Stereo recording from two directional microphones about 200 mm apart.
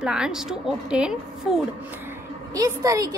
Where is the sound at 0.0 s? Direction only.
5° right (ahead or behind).